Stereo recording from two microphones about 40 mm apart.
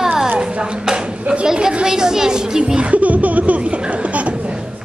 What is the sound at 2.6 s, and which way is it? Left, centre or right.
Music, right.